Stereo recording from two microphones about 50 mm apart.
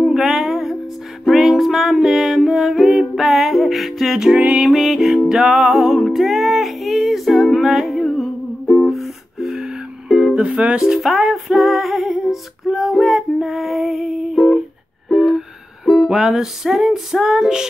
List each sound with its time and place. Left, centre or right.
0.1 s music: centre
4.3 s music: centre
4.6 s music: centre
10.3 s music: right
10.9 s music: centre